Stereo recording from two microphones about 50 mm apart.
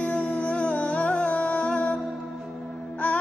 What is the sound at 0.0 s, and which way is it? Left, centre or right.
Music, left.